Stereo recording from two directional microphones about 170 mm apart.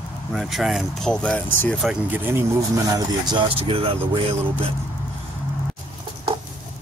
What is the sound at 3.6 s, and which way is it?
Speech, 35° right (ahead or behind).